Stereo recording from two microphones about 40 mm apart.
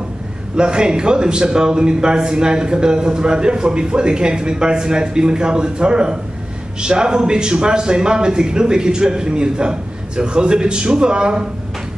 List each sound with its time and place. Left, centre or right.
0.6 s a man's voice: right